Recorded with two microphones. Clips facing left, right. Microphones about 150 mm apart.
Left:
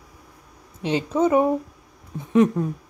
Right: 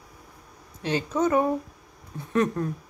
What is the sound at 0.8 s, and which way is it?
Speech, 25° left (ahead or behind).